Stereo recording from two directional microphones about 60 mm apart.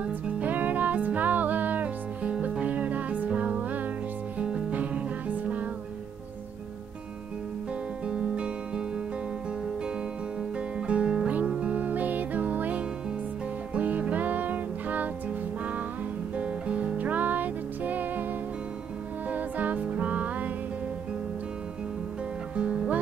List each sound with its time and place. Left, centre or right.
0.0 s music: right
8.1 s guitar: centre
10.9 s music: centre
19.2 s music: right
22.6 s music: centre